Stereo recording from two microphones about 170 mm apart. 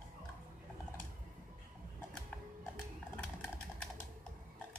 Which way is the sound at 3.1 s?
5° left (ahead or behind).